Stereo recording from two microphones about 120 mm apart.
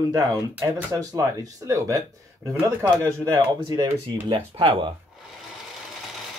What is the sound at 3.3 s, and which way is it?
Speech, 35° right (ahead or behind).